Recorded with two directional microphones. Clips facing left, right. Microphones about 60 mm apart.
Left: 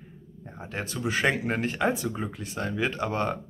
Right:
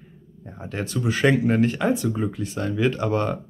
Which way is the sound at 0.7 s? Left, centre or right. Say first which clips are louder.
Right 4 dB; centre.